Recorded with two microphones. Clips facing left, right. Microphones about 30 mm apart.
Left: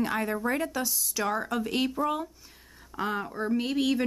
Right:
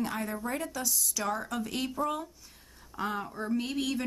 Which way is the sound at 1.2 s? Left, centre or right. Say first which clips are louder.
Left 5 dB; centre.